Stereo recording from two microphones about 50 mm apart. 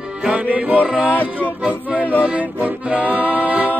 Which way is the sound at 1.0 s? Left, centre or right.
Left.